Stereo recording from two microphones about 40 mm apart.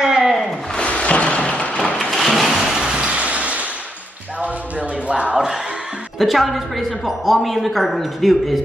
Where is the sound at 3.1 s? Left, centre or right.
Right.